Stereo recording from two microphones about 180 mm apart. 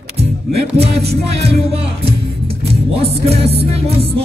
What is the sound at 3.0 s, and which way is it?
Music, 35° right (ahead or behind).